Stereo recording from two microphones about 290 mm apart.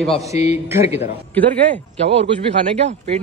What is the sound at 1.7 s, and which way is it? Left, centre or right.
Speech, right.